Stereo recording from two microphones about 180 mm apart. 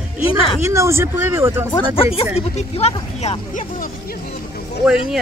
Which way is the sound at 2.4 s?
35° left (ahead or behind).